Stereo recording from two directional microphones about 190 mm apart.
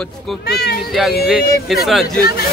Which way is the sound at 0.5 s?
55° left (ahead or behind).